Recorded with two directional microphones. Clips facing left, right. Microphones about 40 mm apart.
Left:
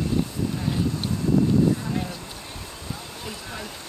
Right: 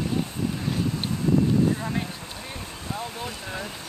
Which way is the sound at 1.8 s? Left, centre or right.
Right.